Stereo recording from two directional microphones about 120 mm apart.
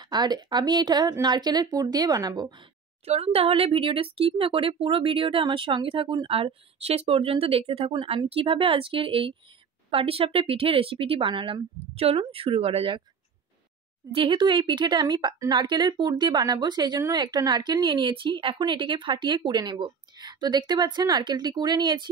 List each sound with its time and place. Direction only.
0.0 s speech: 35° right (ahead or behind)
3.1 s speech: 55° right (ahead or behind)
7.9 s speech: 40° right (ahead or behind)
14.1 s speech: 45° right (ahead or behind)
18.0 s speech: 45° right (ahead or behind)